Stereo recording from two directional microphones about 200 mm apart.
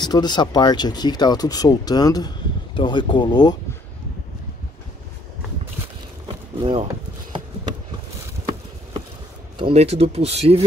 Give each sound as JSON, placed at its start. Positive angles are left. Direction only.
{"t": 0.0, "sound": "speech", "side_deg": 20}
{"t": 6.2, "sound": "a sound", "side_deg": -25}
{"t": 9.6, "sound": "speech", "side_deg": -30}